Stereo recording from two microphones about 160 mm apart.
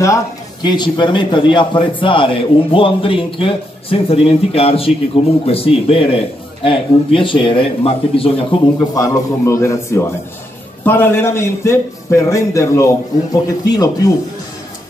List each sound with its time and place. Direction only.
0.0 s a man's voice: 25° left (ahead or behind)
8.9 s a man's voice: 20° left (ahead or behind)